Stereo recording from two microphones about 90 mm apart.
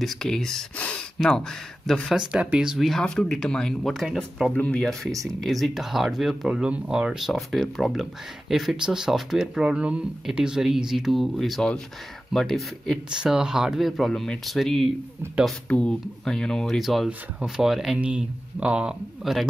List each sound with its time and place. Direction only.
0.0 s speech: 5° left (ahead or behind)
1.2 s speech: 5° left (ahead or behind)
4.5 s speech: 10° left (ahead or behind)
5.2 s speech: centre (ahead or behind)
15.7 s speech: 10° left (ahead or behind); by 19.4 s 5° right (ahead or behind)